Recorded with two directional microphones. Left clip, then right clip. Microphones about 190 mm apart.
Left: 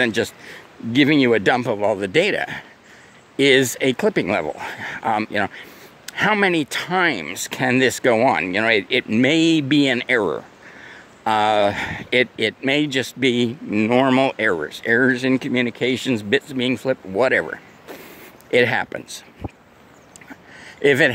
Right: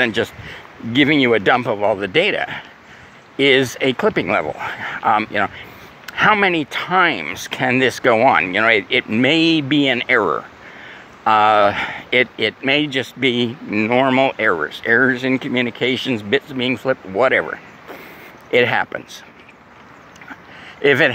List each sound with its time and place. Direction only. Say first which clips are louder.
0.0 s speech: right 2 dB; 50° left (ahead or behind)
20.8 s speech: right 2 dB; 50° left (ahead or behind)